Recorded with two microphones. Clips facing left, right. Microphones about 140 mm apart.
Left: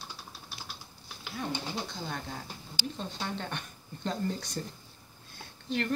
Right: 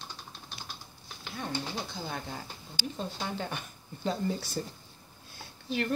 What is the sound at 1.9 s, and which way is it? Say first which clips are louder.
Speech: right 1 dB; centre (ahead or behind).